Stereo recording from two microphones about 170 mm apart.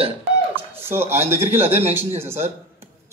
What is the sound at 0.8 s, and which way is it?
A man's voice, 15° right (ahead or behind).